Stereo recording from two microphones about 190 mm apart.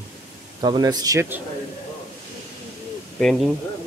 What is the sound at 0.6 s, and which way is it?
Speech, 20° right (ahead or behind).